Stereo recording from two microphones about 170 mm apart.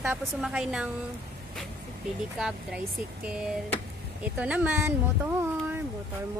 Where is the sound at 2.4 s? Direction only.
5° right (ahead or behind).